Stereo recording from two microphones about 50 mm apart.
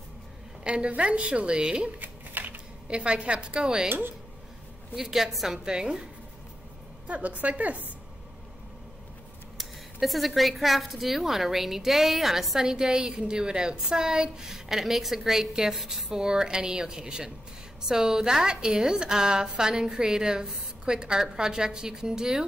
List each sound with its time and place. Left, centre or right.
0.7 s a woman's voice: right
2.0 s a sound: right
2.9 s a woman's voice: right
4.9 s a woman's voice: centre
7.1 s a woman's voice: right
9.6 s speech: centre